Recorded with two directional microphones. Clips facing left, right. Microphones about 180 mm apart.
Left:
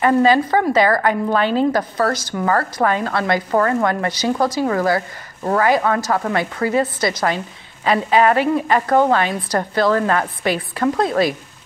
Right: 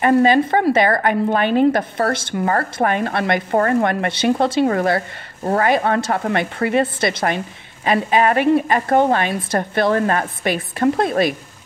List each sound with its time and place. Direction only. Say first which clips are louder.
0.0 s a woman's voice: right 1 dB; 25° right (ahead or behind)